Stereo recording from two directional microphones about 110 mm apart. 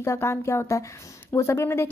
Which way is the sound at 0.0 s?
25° left (ahead or behind).